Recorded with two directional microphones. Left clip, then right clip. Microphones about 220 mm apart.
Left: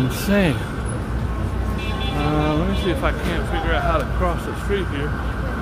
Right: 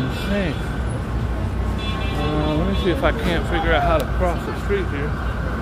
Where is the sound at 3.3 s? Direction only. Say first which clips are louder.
Right 3 dB; 20° right (ahead or behind).